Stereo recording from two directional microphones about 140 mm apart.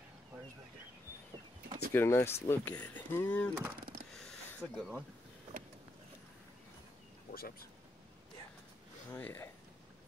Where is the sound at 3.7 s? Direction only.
90° right.